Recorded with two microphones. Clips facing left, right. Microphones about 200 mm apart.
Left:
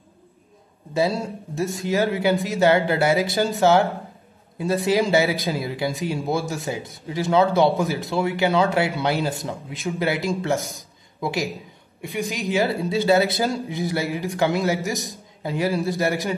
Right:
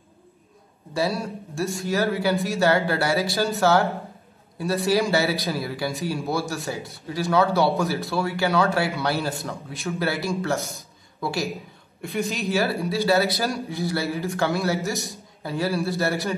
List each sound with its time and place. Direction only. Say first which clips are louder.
0.9 s a man's voice: left 3 dB; 15° left (ahead or behind)